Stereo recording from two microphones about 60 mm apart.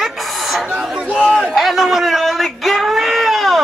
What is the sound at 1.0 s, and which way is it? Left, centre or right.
Speech, centre.